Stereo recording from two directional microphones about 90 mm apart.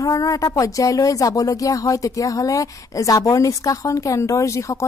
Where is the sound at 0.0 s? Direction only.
40° left (ahead or behind).